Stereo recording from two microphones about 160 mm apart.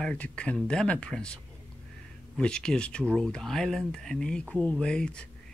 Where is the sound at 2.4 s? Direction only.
5° left (ahead or behind).